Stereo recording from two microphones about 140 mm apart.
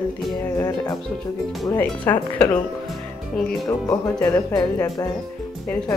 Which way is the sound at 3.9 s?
25° left (ahead or behind).